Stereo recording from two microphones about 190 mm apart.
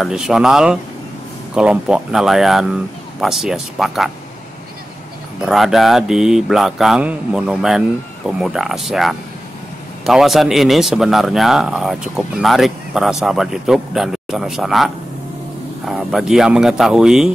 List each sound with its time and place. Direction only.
0.0 s speech: 5° right (ahead or behind)
5.4 s speech: centre (ahead or behind)
15.9 s speech: centre (ahead or behind)